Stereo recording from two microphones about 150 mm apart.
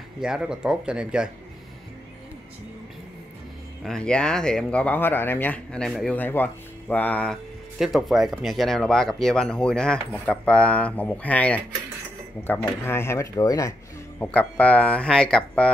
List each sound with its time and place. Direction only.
0.2 s speech: 5° right (ahead or behind)
3.8 s speech: 5° left (ahead or behind)
6.1 s speech: 15° left (ahead or behind)
7.8 s speech: centre (ahead or behind)
12.6 s speech: 15° left (ahead or behind)
14.2 s speech: 10° left (ahead or behind)